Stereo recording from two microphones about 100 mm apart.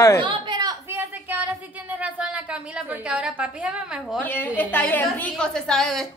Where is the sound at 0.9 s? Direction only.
15° right (ahead or behind).